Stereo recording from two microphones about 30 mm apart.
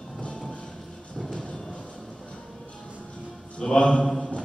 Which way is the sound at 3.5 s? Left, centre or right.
Left.